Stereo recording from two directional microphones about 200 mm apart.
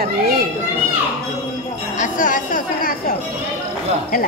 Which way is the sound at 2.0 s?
40° left (ahead or behind).